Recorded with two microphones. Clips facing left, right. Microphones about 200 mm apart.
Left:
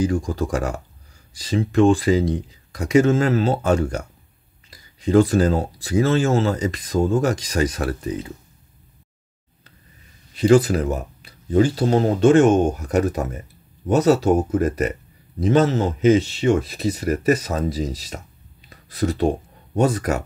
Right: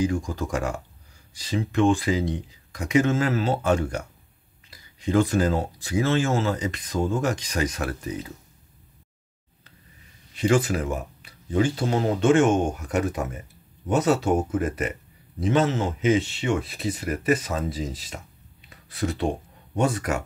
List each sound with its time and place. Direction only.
0.0 s speech: 35° left (ahead or behind)
10.3 s speech: 35° left (ahead or behind)